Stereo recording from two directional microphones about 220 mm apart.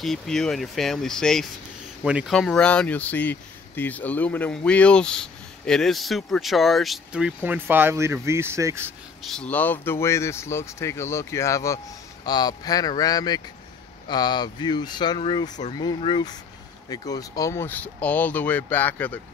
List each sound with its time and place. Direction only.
0.0 s speech: centre (ahead or behind)
9.2 s speech: 5° left (ahead or behind)